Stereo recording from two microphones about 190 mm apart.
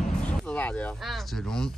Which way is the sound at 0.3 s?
5° left (ahead or behind).